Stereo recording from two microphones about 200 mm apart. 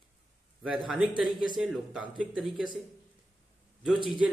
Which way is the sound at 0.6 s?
Centre (ahead or behind).